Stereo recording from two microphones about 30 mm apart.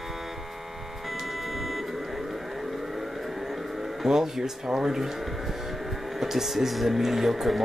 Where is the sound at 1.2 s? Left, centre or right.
Centre.